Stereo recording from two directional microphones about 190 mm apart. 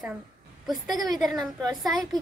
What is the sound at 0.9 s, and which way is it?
Speech, 20° right (ahead or behind).